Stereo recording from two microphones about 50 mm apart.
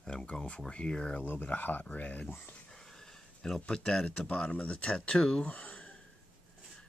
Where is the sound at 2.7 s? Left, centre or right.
Centre.